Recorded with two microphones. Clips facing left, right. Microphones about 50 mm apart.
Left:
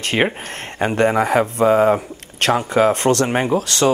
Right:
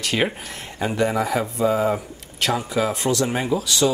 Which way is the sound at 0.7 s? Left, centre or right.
Left.